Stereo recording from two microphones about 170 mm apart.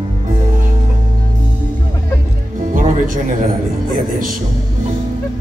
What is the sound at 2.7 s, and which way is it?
Music, 55° right (ahead or behind).